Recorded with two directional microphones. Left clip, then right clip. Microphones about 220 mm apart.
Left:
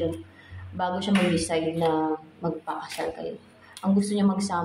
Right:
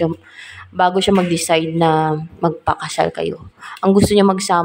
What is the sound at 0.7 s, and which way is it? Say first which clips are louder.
Speech: right 12 dB; 35° right (ahead or behind).